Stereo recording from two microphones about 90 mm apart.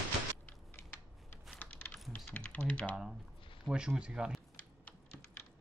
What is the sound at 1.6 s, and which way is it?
Typing, 20° left (ahead or behind).